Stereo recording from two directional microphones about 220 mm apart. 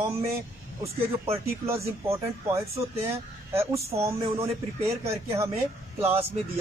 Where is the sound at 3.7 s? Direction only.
30° right (ahead or behind).